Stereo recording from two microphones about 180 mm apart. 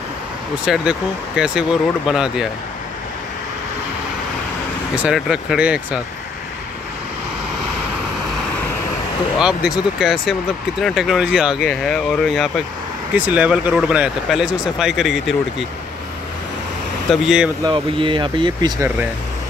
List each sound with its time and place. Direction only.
0.7 s speech: 5° right (ahead or behind)
4.9 s speech: 5° right (ahead or behind)
9.4 s speech: 5° right (ahead or behind)
13.1 s speech: 10° right (ahead or behind)
17.1 s speech: 5° right (ahead or behind)
17.6 s speech: 30° right (ahead or behind)